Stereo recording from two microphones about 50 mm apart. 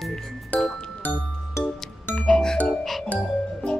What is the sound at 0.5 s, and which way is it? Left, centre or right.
Music, left.